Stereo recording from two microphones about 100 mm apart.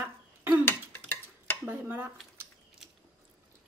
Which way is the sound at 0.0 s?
20° right (ahead or behind).